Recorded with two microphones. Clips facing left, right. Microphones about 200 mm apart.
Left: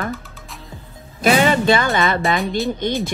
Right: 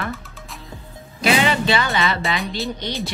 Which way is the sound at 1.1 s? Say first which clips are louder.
Left 4 dB; 45° left (ahead or behind).